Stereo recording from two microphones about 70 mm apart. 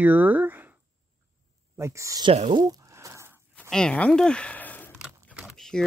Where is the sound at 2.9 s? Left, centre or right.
Right.